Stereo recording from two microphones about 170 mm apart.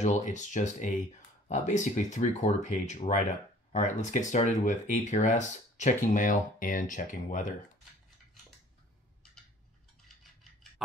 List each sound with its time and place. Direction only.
0.0 s speech: 45° left (ahead or behind)